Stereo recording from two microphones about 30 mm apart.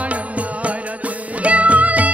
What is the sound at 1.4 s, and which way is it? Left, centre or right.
Music, right.